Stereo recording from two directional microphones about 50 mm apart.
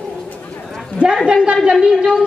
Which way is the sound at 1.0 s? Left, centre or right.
Centre.